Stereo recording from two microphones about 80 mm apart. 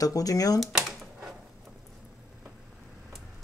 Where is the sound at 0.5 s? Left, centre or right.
Centre.